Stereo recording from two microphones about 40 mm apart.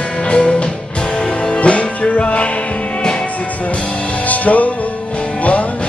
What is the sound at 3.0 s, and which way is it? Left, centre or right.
Music, left.